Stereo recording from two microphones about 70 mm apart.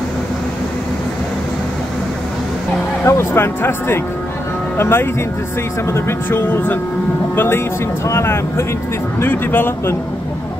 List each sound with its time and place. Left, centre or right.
3.1 s speech: left